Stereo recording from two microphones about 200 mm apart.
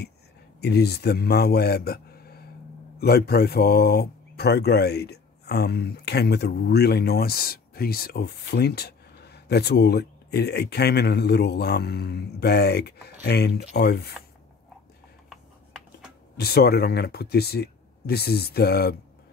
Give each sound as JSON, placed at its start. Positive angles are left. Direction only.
{"t": 0.6, "sound": "a man's voice", "side_deg": 55}
{"t": 16.3, "sound": "speech", "side_deg": 50}